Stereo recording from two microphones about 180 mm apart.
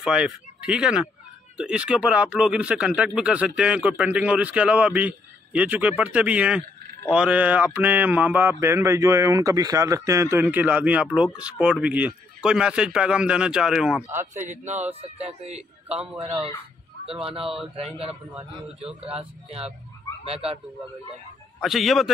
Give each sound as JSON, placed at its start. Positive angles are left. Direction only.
{"t": 0.0, "sound": "speech", "side_deg": -5}
{"t": 14.3, "sound": "speech", "side_deg": -45}
{"t": 17.0, "sound": "speech", "side_deg": -30}
{"t": 21.5, "sound": "speech", "side_deg": 0}